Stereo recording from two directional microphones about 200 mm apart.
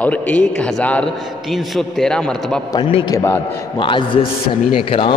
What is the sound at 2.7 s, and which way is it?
A man's voice, 25° left (ahead or behind).